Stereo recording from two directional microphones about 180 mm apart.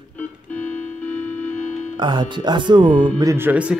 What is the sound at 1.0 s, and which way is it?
Music, 10° left (ahead or behind).